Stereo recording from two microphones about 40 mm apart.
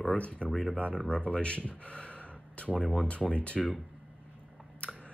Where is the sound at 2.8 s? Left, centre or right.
Centre.